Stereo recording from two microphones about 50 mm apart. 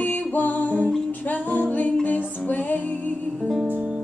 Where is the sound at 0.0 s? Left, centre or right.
Left.